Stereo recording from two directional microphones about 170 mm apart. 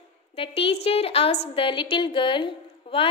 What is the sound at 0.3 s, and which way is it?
A woman's voice, 35° left (ahead or behind).